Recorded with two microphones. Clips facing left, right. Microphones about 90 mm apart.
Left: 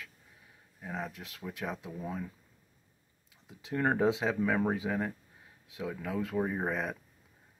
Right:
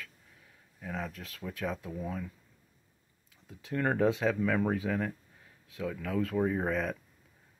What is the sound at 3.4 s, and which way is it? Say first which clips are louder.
Speech: left 1 dB; 15° left (ahead or behind).